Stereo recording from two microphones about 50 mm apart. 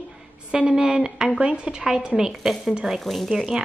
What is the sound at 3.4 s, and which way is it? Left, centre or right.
Speech, centre.